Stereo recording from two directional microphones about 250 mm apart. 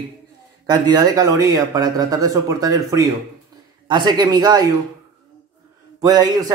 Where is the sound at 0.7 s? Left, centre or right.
Centre.